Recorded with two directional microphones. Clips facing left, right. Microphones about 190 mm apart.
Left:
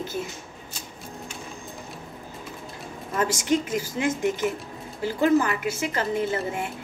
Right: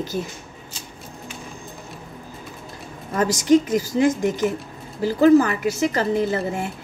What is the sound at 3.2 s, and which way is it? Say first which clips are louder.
A woman's voice: right 7 dB; 40° right (ahead or behind).